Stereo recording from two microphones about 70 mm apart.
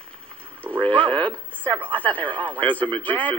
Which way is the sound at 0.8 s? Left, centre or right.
Centre.